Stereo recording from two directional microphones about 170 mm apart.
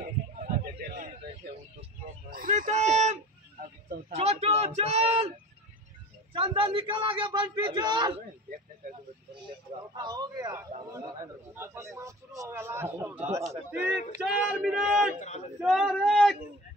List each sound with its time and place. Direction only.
0.4 s a sound: 50° right (ahead or behind)
6.3 s a man's voice: 30° right (ahead or behind)
10.0 s a man's voice: 25° right (ahead or behind)
13.2 s a man's voice: 40° right (ahead or behind)
13.5 s speech: 15° right (ahead or behind)